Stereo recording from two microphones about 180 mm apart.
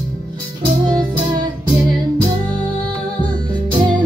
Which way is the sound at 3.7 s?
25° right (ahead or behind).